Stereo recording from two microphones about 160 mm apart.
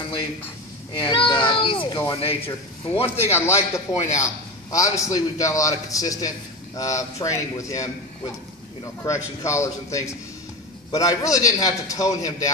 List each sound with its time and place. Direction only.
0.9 s speech: 30° left (ahead or behind)
3.3 s a man's voice: 15° left (ahead or behind)
9.0 s a man's voice: 20° left (ahead or behind)